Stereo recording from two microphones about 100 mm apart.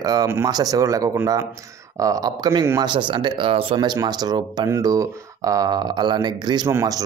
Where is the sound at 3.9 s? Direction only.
40° right (ahead or behind).